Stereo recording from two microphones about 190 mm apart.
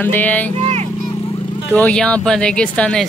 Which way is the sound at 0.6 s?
35° right (ahead or behind).